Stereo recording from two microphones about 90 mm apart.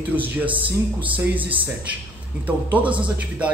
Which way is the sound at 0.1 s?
20° right (ahead or behind).